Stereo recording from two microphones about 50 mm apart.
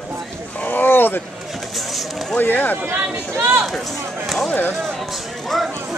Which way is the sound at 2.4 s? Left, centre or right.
Left.